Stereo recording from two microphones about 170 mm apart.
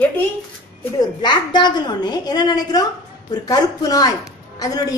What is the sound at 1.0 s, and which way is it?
A woman's voice, 25° left (ahead or behind).